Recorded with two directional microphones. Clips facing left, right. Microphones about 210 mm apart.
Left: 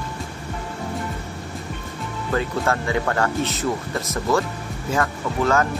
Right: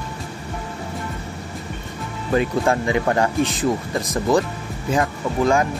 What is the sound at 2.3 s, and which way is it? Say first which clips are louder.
Speech: right 4 dB; 15° right (ahead or behind).